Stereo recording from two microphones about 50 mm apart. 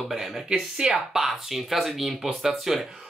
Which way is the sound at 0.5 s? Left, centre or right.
Centre.